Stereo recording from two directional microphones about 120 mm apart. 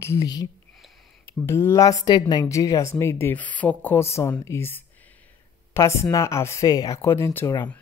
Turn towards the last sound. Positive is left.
turn(degrees=25)  # may be behind; listen again after turning